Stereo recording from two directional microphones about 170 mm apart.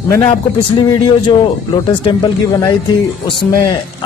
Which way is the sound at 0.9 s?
25° left (ahead or behind).